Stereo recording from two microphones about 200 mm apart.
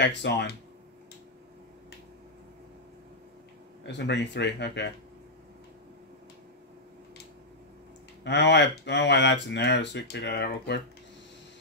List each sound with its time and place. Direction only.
0.0 s speech: 60° left (ahead or behind)
3.8 s speech: 60° left (ahead or behind)
8.2 s speech: 60° left (ahead or behind)